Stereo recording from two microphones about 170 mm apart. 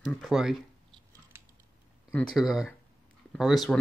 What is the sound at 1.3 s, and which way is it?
Typing, 15° right (ahead or behind).